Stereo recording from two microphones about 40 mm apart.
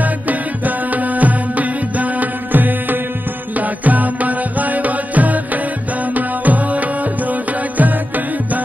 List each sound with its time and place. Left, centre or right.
0.0 s music: right